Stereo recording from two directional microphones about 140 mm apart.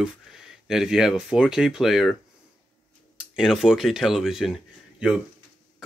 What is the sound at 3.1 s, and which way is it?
Speech, 5° right (ahead or behind).